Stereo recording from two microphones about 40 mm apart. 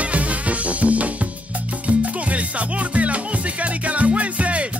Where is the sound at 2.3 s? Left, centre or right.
Right.